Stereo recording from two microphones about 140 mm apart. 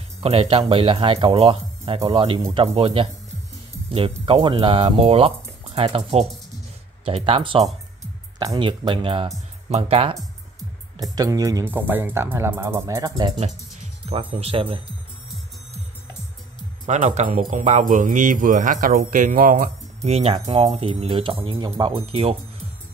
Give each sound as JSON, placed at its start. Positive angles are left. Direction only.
{"t": 0.2, "sound": "speech", "side_deg": -45}
{"t": 11.1, "sound": "speech", "side_deg": -25}
{"t": 11.7, "sound": "speech", "side_deg": -15}
{"t": 14.3, "sound": "speech", "side_deg": -40}
{"t": 16.8, "sound": "speech", "side_deg": -55}
{"t": 20.0, "sound": "speech", "side_deg": -45}